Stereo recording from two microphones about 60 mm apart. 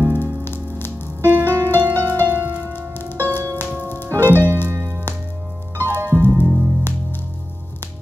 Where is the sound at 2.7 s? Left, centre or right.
Left.